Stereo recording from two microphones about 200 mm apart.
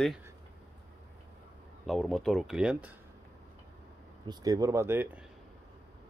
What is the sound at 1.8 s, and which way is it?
Speech, centre (ahead or behind).